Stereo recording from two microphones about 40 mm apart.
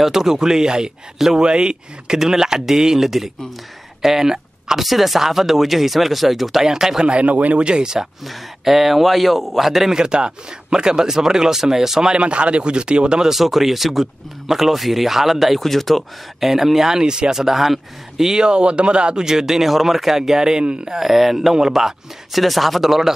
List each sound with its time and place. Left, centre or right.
0.0 s speech: centre
1.4 s speech: right
7.1 s speech: right
7.6 s speech: centre
9.9 s speech: right
12.2 s speech: right
13.3 s speech: centre; by 19.2 s right
19.2 s speech: centre
20.9 s speech: centre